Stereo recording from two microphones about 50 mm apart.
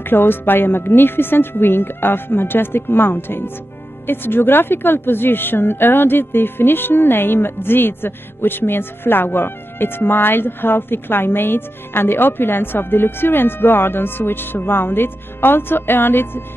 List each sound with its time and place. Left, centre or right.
0.0 s speech: left